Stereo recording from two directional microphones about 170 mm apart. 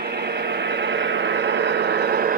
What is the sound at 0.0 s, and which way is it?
Vehicle, 80° right.